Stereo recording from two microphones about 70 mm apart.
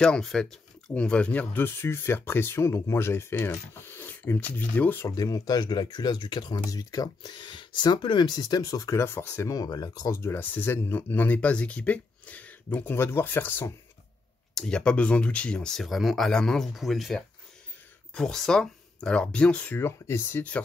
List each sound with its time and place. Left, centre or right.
0.0 s speech: centre; by 5.0 s left
5.0 s speech: left
8.9 s speech: left
9.5 s speech: left
10.1 s speech: left
14.5 s speech: centre
19.8 s speech: left